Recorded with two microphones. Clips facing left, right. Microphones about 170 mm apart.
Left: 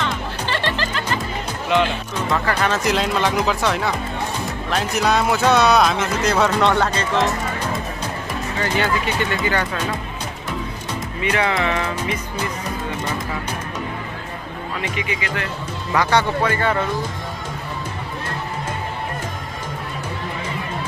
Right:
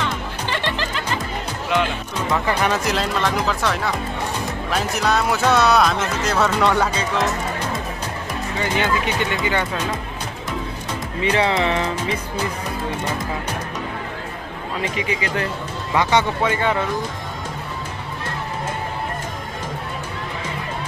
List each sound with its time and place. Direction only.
0.0 s music: 15° right (ahead or behind)
1.7 s speech: centre (ahead or behind)
2.4 s speech: 15° right (ahead or behind)
2.9 s speech: centre (ahead or behind)
8.5 s speech: 15° right (ahead or behind)
11.2 s speech: 30° right (ahead or behind)
14.8 s speech: 35° right (ahead or behind)
15.9 s speech: 20° right (ahead or behind)